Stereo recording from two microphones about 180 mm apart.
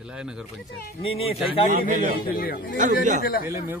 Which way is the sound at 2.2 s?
55° left (ahead or behind).